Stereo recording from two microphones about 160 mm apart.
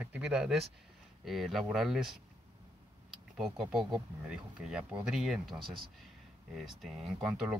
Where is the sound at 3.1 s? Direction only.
Centre (ahead or behind).